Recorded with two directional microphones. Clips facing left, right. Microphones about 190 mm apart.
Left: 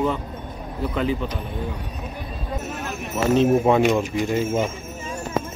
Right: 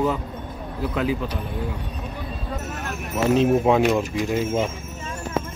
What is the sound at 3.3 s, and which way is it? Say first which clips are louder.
Speech: left 1 dB; centre (ahead or behind).